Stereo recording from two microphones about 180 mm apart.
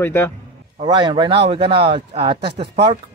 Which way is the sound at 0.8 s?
25° right (ahead or behind).